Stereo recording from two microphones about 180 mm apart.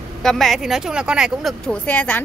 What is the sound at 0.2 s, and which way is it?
Speech, centre (ahead or behind).